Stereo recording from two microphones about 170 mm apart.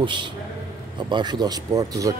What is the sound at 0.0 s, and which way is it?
Speech, 30° right (ahead or behind).